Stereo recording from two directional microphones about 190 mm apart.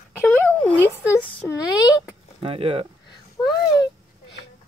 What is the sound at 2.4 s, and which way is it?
Speech, 30° right (ahead or behind).